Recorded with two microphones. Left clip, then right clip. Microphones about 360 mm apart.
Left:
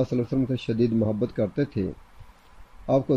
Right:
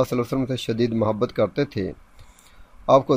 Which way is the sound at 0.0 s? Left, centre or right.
Right.